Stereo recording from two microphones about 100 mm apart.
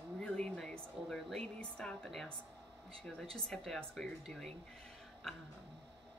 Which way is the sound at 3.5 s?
5° left (ahead or behind).